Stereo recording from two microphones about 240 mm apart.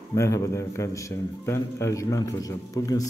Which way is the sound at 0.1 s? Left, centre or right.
Centre.